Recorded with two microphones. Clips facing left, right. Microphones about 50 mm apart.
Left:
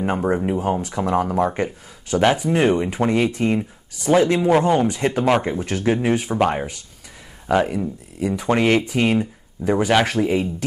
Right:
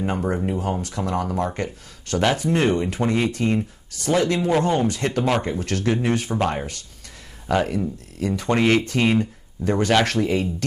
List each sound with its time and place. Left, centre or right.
0.0 s speech: centre